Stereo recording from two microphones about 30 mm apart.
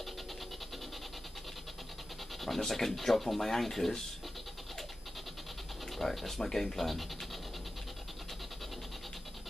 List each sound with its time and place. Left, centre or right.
2.4 s speech: centre
5.9 s speech: centre